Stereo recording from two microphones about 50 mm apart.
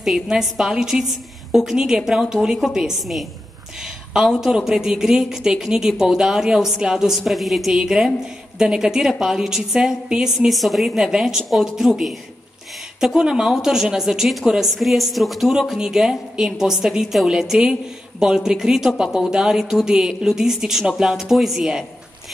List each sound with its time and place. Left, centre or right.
0.0 s a woman's voice: centre
3.8 s a sound: centre
4.5 s a woman's voice: centre
10.5 s speech: centre
11.1 s a woman's voice: centre
14.2 s speech: centre
15.8 s a woman's voice: centre